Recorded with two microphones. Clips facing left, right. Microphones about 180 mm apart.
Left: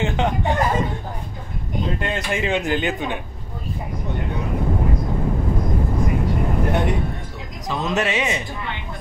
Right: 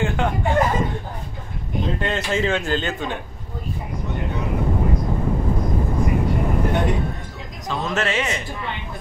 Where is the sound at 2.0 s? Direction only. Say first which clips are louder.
Right 3 dB; 15° left (ahead or behind).